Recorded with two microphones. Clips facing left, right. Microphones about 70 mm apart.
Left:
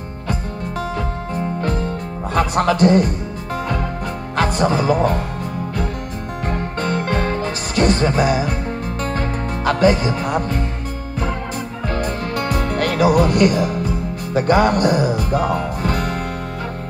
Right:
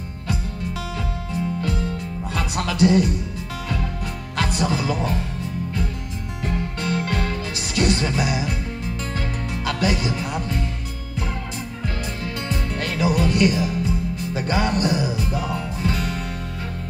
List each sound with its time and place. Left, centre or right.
0.3 s music: left
4.4 s a man's voice: left
6.4 s music: left
11.9 s music: left